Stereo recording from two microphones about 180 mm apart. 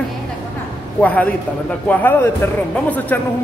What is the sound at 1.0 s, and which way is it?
A woman's voice, 10° left (ahead or behind).